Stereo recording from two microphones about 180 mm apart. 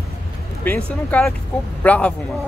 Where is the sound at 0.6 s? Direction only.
10° left (ahead or behind).